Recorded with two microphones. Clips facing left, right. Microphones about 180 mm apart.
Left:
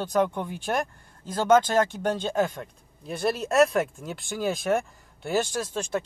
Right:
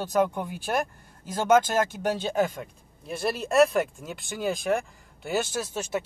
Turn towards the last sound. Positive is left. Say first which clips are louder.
# left 1 dB
turn(degrees=-5)  # may be behind; listen again after turning